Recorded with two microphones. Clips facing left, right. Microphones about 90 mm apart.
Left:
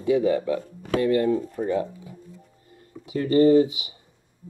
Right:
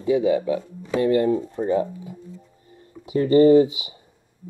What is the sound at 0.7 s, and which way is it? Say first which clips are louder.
Speech: right 1 dB; 60° left (ahead or behind).